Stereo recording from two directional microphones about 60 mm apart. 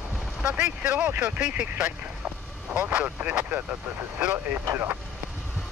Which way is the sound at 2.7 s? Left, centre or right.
Right.